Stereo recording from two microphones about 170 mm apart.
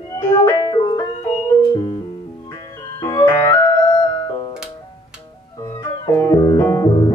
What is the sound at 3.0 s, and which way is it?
Music, 20° left (ahead or behind).